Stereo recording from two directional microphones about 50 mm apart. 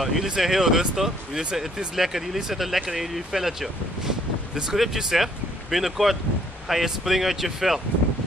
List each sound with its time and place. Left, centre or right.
0.0 s speech: centre
1.4 s speech: centre